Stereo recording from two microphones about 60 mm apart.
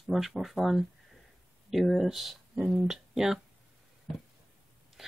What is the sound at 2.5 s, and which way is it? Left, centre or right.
Speech, centre.